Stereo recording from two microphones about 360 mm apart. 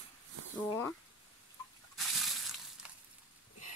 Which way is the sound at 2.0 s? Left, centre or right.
Centre.